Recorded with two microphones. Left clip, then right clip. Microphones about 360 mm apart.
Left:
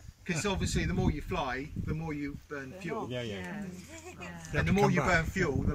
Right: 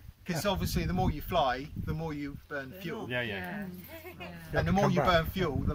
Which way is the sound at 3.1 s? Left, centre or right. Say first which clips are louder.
Right 4 dB; right.